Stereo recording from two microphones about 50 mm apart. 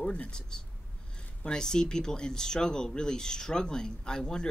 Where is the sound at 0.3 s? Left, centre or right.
Centre.